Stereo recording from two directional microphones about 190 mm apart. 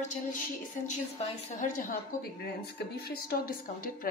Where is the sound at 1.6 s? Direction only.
45° left (ahead or behind).